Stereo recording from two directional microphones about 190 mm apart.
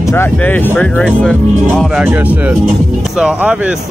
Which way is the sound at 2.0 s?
10° right (ahead or behind).